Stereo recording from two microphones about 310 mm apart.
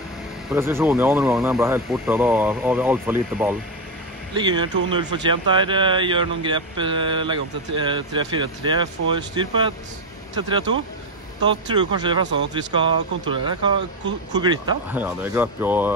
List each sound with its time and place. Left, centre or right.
0.5 s speech: centre